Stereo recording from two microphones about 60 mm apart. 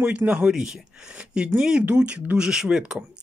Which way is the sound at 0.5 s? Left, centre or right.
Centre.